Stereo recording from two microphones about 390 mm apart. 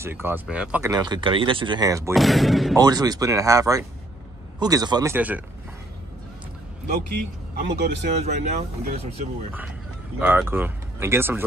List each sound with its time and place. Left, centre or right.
0.0 s speech: centre
7.1 s speech: right
10.2 s speech: centre